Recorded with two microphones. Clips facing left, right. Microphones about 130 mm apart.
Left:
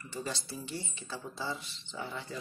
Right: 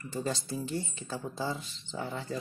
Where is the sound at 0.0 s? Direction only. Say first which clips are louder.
Right 5 dB; 45° right (ahead or behind).